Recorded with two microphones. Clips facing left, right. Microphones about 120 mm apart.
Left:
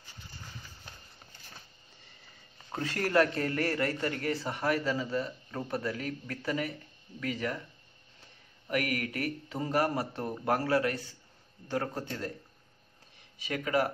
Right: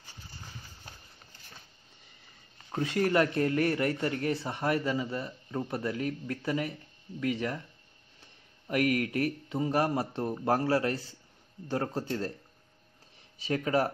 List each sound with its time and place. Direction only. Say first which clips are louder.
2.8 s speech: right 1 dB; 20° right (ahead or behind)
8.6 s speech: right 4 dB; 25° right (ahead or behind)
13.4 s speech: right 2 dB; 30° right (ahead or behind)